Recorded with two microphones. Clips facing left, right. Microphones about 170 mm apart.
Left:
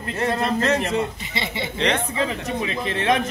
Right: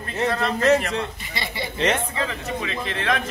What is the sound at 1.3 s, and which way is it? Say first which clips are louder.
A man's voice: left 2 dB; 20° left (ahead or behind).